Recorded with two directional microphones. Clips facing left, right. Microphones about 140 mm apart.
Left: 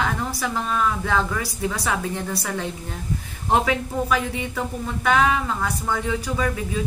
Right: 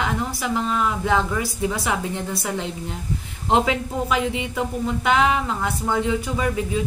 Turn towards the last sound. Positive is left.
turn(degrees=-20)  # may be behind; listen again after turning